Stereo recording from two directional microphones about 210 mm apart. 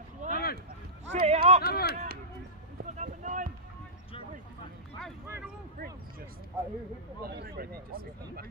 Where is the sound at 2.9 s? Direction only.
35° right (ahead or behind).